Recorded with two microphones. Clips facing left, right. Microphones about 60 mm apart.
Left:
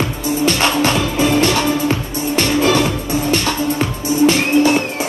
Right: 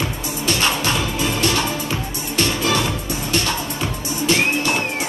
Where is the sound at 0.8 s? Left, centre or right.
Left.